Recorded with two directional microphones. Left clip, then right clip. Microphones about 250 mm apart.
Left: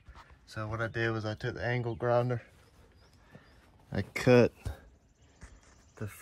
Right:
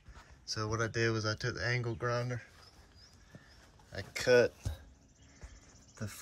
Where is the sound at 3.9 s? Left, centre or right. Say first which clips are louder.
Left 2 dB; left.